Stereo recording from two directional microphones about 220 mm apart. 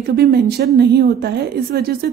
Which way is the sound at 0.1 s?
45° right (ahead or behind).